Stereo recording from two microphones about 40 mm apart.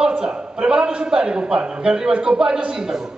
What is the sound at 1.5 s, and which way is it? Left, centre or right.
A man's voice, right.